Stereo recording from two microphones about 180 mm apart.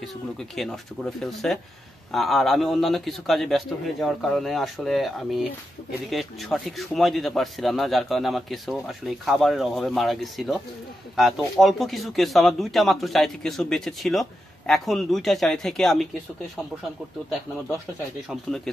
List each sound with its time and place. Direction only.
0.4 s a man's voice: centre (ahead or behind)